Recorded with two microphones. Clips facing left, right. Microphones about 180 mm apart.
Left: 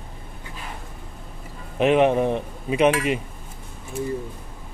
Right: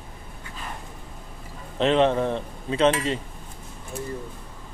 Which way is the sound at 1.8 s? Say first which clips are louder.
Left 2 dB; 15° left (ahead or behind).